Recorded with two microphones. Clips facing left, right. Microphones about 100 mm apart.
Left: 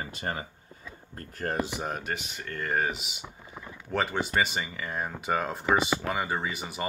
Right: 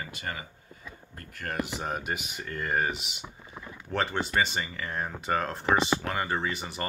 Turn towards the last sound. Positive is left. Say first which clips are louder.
# even
turn(degrees=5)  # may be behind; listen again after turning